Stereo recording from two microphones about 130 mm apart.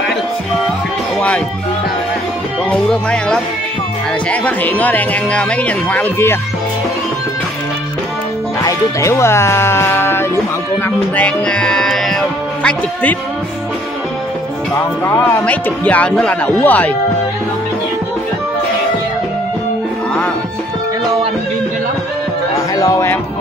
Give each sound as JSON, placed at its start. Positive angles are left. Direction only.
{"t": 2.7, "sound": "speech", "side_deg": 5}
{"t": 8.6, "sound": "speech", "side_deg": 20}
{"t": 15.0, "sound": "speech", "side_deg": 15}
{"t": 22.8, "sound": "music", "side_deg": 30}